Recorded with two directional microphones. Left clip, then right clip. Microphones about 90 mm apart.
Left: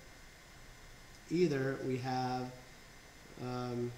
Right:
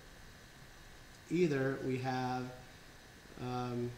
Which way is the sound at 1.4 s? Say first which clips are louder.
Even; 25° right (ahead or behind).